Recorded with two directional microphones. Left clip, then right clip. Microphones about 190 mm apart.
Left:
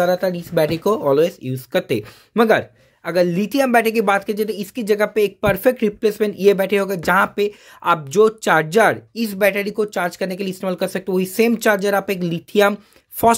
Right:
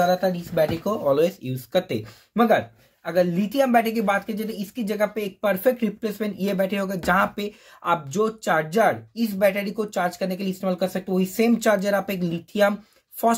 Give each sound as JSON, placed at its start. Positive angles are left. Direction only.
{"t": 0.0, "sound": "speech", "side_deg": 60}
{"t": 1.1, "sound": "speech", "side_deg": 35}